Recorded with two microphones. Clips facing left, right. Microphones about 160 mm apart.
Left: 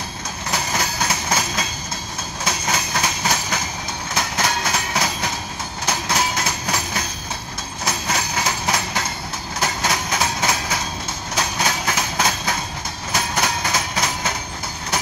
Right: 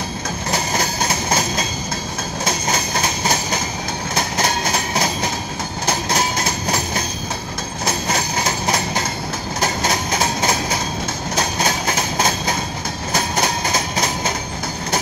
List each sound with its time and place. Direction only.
0.5 s train: 40° right (ahead or behind)